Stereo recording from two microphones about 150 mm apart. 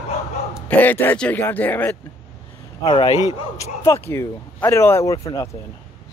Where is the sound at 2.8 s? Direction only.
30° left (ahead or behind).